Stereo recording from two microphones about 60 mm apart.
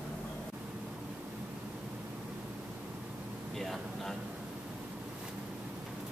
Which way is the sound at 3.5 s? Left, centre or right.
Centre.